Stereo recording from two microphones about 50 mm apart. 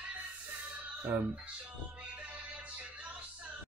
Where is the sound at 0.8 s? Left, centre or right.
Right.